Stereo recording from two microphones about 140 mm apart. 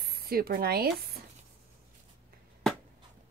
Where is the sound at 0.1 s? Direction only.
90° right.